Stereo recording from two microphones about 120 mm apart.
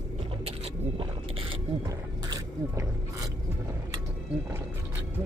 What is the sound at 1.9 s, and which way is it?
Speech, 30° right (ahead or behind).